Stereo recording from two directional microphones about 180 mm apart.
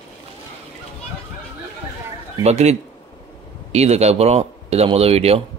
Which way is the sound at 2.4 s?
35° right (ahead or behind).